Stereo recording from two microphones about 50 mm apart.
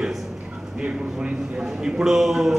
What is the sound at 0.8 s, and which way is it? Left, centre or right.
A man's voice, right.